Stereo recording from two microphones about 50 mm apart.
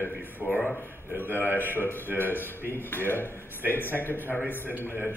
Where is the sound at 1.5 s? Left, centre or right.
Left.